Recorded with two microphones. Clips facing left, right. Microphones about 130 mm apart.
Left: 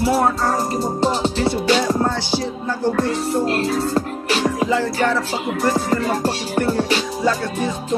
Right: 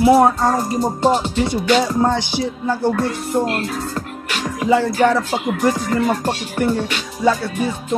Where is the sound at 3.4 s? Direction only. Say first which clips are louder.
Left 3 dB; 35° left (ahead or behind).